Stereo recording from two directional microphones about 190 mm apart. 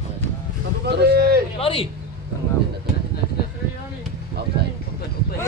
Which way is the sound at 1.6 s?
30° left (ahead or behind).